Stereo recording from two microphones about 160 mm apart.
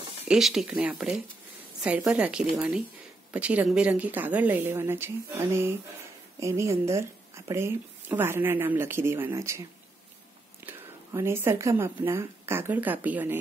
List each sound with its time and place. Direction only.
0.3 s speech: centre (ahead or behind); by 9.6 s 15° right (ahead or behind)
10.6 s a woman's voice: 15° right (ahead or behind)